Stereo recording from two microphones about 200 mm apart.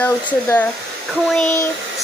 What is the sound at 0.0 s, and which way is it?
Speech, 10° left (ahead or behind).